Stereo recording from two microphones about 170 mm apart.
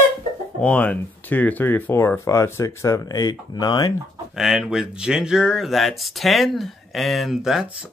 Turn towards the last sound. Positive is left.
turn(degrees=0)  # may be behind; listen again after turning